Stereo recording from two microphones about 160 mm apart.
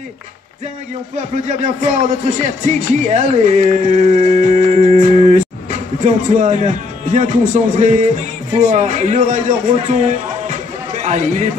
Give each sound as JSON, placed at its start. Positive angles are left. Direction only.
{"t": 1.3, "sound": "a man's voice", "side_deg": -50}